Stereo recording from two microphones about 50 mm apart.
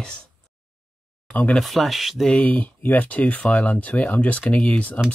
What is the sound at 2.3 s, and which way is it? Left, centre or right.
Speech, left.